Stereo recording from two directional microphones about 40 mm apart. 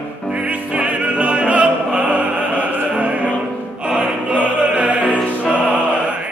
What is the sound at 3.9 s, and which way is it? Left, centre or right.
Opera, right.